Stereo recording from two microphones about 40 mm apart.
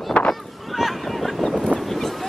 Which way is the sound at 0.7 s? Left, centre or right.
Centre.